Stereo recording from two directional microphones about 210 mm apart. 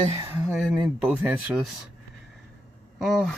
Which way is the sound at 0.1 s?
15° right (ahead or behind).